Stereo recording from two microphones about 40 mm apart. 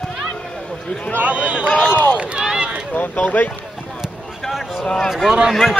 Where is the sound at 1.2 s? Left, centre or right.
Right.